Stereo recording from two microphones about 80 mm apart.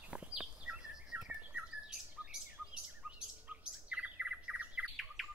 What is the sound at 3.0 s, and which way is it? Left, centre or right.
Bird, centre.